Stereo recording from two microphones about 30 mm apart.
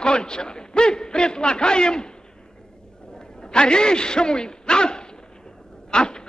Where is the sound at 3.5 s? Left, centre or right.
Left.